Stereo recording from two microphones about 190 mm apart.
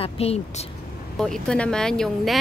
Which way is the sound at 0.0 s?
30° left (ahead or behind).